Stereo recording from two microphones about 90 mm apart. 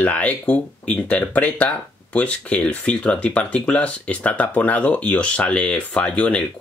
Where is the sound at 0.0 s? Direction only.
15° left (ahead or behind).